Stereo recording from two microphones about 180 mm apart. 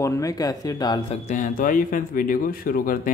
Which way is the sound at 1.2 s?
45° left (ahead or behind).